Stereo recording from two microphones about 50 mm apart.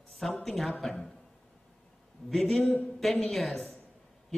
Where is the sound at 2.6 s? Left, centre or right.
Left.